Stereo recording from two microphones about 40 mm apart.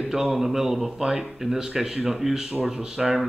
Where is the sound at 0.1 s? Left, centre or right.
Centre.